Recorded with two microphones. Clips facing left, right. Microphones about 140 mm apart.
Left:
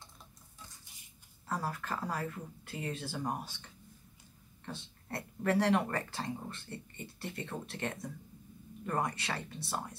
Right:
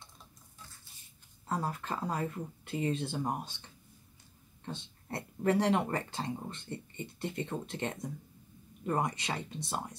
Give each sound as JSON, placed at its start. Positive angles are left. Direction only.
{"t": 1.5, "sound": "speech", "side_deg": -20}
{"t": 4.6, "sound": "speech", "side_deg": -20}